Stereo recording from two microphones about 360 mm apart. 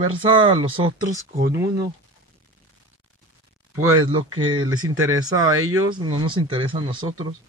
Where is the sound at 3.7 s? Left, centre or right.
Right.